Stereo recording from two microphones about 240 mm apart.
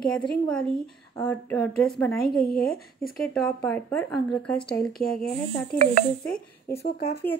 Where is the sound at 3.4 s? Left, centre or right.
Centre.